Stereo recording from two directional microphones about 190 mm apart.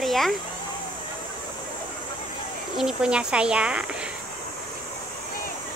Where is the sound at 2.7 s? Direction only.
5° right (ahead or behind).